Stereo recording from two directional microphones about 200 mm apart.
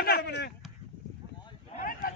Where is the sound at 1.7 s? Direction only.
45° left (ahead or behind).